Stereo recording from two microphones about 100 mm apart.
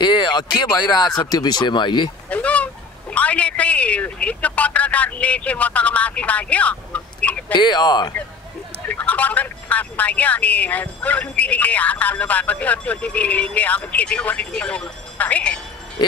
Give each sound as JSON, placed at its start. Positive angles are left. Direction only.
{"t": 0.0, "sound": "speech", "side_deg": 50}
{"t": 2.2, "sound": "speech", "side_deg": 15}
{"t": 7.5, "sound": "speech", "side_deg": 45}
{"t": 8.8, "sound": "speech", "side_deg": 15}